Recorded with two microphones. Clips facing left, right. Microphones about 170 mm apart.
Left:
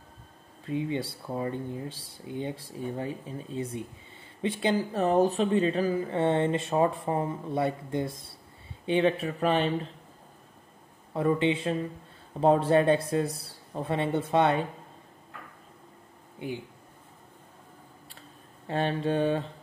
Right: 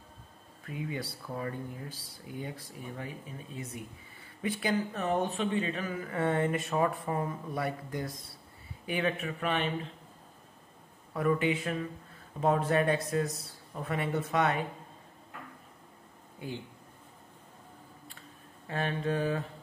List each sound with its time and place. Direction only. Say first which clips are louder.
0.7 s speech: left 7 dB; 25° left (ahead or behind)
11.1 s speech: left 3 dB; 25° left (ahead or behind)
16.3 s speech: left 4 dB; 15° left (ahead or behind)
18.7 s speech: left 4 dB; 30° left (ahead or behind)